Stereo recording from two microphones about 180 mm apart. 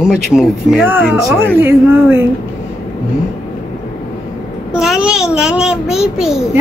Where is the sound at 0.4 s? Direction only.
5° right (ahead or behind).